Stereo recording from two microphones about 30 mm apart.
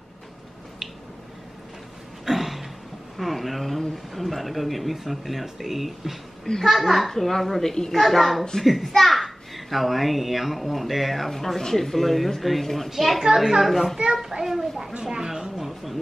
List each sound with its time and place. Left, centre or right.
2.2 s a sound: centre
3.2 s a child's voice: centre
7.6 s a woman's voice: centre
7.9 s a child's voice: centre
13.2 s a woman's voice: centre
13.6 s a child's voice: centre
15.5 s a child's voice: centre